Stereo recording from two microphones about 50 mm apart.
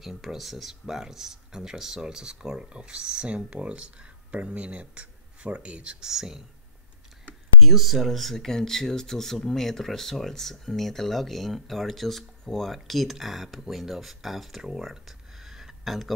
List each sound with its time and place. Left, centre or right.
0.0 s speech: centre
6.0 s speech: centre
7.6 s speech: centre